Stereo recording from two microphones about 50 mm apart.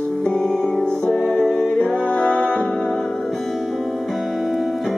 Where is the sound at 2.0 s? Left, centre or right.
Left.